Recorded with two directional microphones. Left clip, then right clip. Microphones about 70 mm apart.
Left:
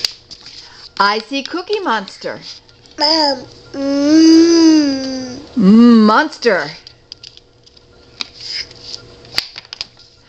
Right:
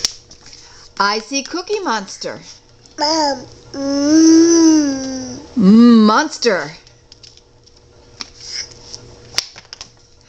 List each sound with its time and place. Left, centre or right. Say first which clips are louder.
0.4 s speech: left 5 dB; centre
3.0 s babbling: left 2 dB; centre
5.6 s a sound: left 1 dB; centre